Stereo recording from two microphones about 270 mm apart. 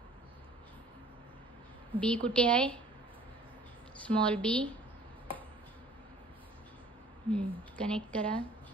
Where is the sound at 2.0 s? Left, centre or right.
Centre.